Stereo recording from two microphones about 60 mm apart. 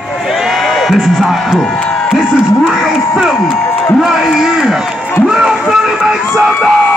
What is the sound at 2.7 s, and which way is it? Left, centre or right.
A man's voice, centre.